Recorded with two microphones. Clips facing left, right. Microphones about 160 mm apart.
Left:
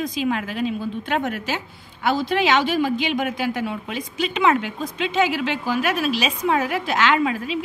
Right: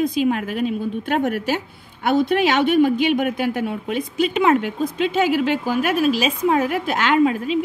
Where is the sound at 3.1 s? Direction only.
45° right (ahead or behind).